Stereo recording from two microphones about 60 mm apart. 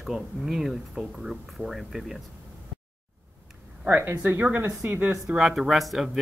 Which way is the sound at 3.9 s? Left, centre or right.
Right.